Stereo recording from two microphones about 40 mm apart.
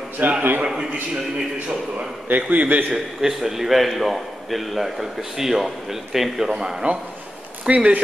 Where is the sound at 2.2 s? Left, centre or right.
Right.